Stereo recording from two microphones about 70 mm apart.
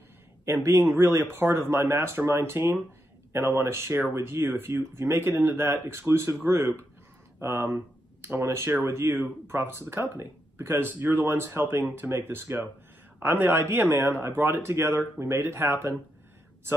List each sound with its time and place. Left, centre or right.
0.5 s speech: right